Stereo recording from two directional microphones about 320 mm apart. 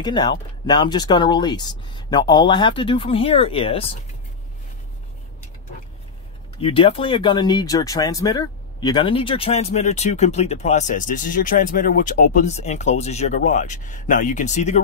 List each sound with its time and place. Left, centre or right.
0.0 s speech: centre
6.6 s speech: centre